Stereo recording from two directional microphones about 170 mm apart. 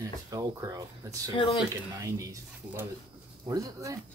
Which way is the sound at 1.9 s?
20° right (ahead or behind).